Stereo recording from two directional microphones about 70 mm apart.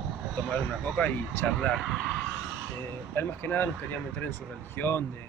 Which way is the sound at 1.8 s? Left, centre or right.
Centre.